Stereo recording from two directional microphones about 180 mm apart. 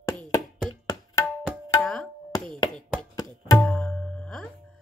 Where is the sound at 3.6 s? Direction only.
5° left (ahead or behind).